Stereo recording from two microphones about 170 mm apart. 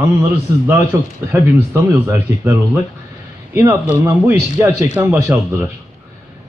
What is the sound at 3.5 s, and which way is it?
Speech, 15° right (ahead or behind).